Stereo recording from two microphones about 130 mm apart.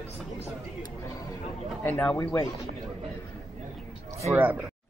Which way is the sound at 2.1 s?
25° left (ahead or behind).